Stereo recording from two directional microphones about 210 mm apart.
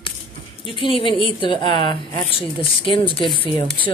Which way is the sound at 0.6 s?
25° left (ahead or behind).